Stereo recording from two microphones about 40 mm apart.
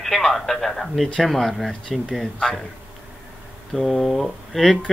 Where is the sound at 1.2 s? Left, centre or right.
Centre.